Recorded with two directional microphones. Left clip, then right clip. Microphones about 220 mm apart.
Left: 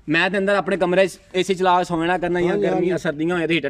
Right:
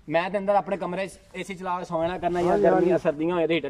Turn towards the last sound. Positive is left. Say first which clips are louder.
# left 3 dB
turn(degrees=40)  # may be behind; listen again after turning